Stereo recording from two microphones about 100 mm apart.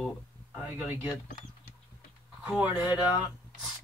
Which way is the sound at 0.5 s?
15° right (ahead or behind).